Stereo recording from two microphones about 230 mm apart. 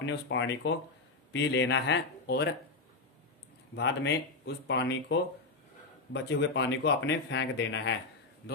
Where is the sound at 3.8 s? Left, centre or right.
Left.